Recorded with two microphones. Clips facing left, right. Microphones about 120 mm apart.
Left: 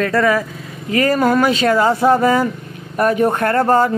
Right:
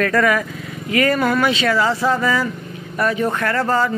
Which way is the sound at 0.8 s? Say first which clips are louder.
Left 2 dB; 35° left (ahead or behind).